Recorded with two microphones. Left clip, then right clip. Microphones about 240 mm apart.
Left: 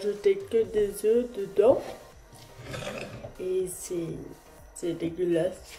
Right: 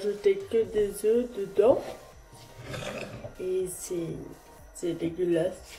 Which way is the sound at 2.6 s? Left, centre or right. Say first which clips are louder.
Even; centre.